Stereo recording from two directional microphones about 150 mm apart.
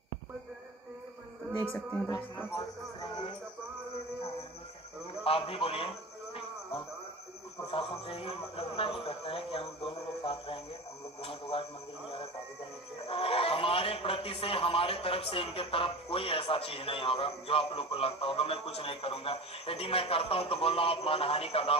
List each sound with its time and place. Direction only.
5.2 s a sound: 40° left (ahead or behind)
7.7 s a man's voice: 40° left (ahead or behind)
13.0 s a man's voice: 40° left (ahead or behind)